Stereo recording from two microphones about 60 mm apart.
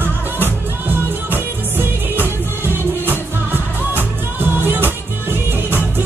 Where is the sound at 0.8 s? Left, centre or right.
Right.